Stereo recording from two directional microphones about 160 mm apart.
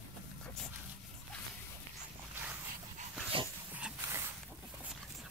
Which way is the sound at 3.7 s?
10° right (ahead or behind).